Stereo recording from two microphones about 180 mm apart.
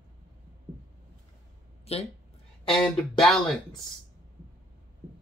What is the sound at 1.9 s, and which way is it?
Speech, 35° left (ahead or behind).